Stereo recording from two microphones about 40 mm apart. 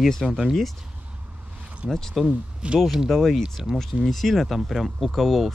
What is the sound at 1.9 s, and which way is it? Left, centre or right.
Speech, centre.